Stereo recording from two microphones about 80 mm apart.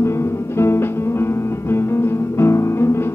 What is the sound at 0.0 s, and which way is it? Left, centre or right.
Music, left.